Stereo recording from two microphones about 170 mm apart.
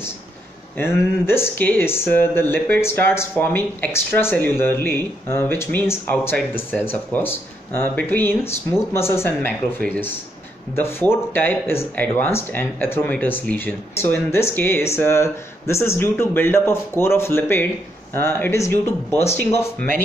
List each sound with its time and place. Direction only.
0.7 s speech: 15° left (ahead or behind)